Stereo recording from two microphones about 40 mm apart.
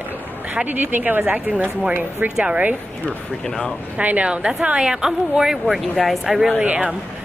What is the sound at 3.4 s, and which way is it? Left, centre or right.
Speech, centre.